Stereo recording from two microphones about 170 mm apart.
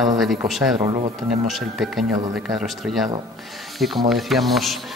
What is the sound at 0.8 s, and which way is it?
Speech, 25° right (ahead or behind).